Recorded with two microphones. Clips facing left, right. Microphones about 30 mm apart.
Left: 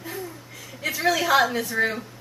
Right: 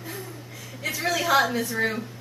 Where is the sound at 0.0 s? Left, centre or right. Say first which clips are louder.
Left 2 dB; centre.